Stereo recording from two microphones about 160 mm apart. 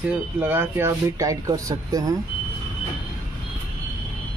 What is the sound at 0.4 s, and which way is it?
Speech, 15° right (ahead or behind).